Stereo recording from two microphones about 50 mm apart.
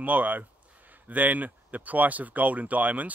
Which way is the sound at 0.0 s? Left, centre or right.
Right.